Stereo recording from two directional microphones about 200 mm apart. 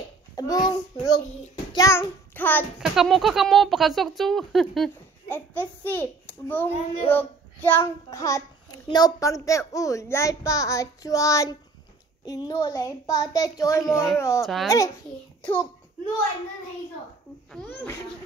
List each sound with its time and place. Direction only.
0.4 s a child's voice: 20° left (ahead or behind)
1.7 s child singing: 15° left (ahead or behind)
2.8 s speech: centre (ahead or behind); by 14.4 s 15° left (ahead or behind)
14.4 s speech: centre (ahead or behind)
17.5 s speech: 5° left (ahead or behind)